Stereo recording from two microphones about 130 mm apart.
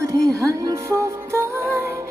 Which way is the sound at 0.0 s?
25° right (ahead or behind).